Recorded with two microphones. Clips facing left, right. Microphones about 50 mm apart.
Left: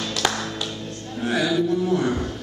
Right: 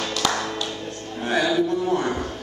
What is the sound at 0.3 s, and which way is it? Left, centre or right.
Music, right.